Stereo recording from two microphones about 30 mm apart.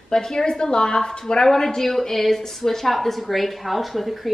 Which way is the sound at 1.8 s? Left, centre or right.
Centre.